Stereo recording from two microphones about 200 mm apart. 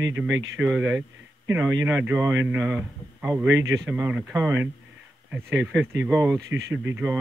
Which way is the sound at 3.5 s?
65° right (ahead or behind).